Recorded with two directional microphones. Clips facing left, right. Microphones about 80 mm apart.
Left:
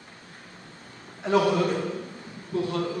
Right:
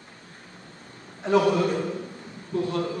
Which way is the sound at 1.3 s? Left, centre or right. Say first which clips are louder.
Right 1 dB; right.